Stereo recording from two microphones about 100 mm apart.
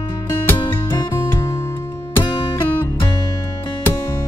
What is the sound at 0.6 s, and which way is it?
Music, 55° left (ahead or behind).